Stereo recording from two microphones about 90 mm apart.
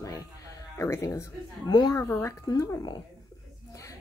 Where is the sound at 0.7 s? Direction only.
30° left (ahead or behind).